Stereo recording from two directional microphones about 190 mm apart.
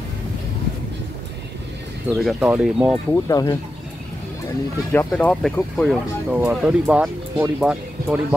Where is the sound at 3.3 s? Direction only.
20° left (ahead or behind).